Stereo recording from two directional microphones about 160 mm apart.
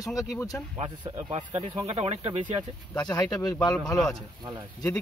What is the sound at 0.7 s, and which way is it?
Speech, 30° right (ahead or behind).